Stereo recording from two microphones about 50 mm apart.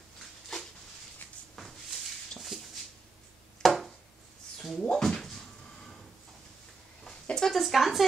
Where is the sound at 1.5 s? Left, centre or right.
Centre.